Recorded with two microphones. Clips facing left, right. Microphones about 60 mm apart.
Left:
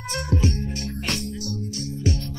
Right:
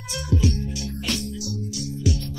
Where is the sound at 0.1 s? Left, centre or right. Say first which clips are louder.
Even; left.